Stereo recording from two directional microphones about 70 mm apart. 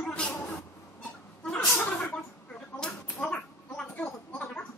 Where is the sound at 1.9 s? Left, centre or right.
Centre.